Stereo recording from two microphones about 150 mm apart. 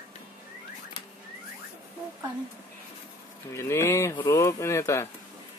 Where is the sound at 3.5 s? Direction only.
20° left (ahead or behind).